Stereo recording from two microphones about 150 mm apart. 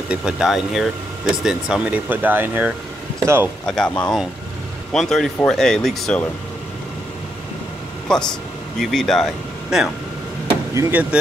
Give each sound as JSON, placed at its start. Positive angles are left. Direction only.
{"t": 0.1, "sound": "speech", "side_deg": -5}
{"t": 3.6, "sound": "speech", "side_deg": 5}
{"t": 8.1, "sound": "speech", "side_deg": 5}
{"t": 10.7, "sound": "speech", "side_deg": -15}